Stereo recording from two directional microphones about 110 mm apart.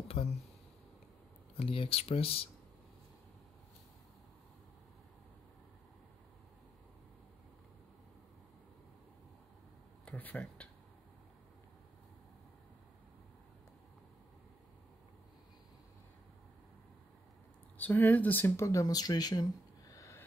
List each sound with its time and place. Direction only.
0.1 s speech: 60° left (ahead or behind)
1.6 s speech: 55° left (ahead or behind)
10.0 s speech: 15° left (ahead or behind)
17.7 s speech: 15° left (ahead or behind); by 19.4 s 35° left (ahead or behind)
19.9 s a sound: 30° left (ahead or behind)